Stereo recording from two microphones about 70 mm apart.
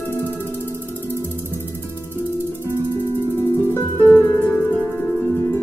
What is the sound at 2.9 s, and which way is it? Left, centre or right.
Music, left.